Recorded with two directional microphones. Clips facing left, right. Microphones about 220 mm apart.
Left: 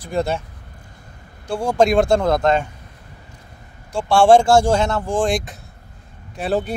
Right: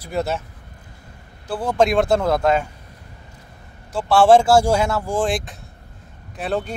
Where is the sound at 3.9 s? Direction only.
5° right (ahead or behind).